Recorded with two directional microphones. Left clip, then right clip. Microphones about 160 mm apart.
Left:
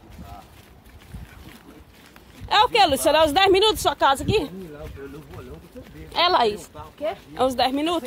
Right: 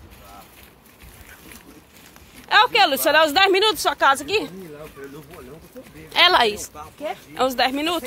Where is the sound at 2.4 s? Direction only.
25° left (ahead or behind).